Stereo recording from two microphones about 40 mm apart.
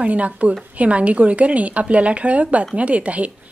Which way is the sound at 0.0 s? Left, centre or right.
Right.